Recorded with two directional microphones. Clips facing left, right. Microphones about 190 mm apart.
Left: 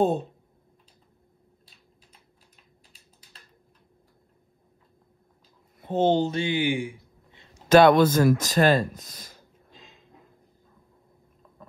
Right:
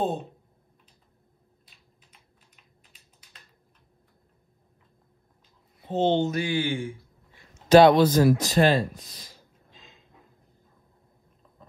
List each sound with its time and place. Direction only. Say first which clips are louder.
2.5 s typing: left 2 dB; 35° left (ahead or behind)
5.8 s speech: left 1 dB; 50° left (ahead or behind)
6.2 s speech: left 1 dB; 25° left (ahead or behind)
7.5 s speech: right 1 dB; 50° left (ahead or behind)